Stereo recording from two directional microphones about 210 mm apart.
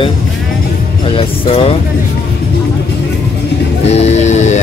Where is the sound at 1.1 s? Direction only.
25° left (ahead or behind).